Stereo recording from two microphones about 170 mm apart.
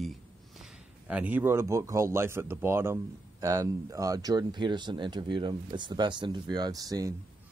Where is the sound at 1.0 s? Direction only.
10° right (ahead or behind).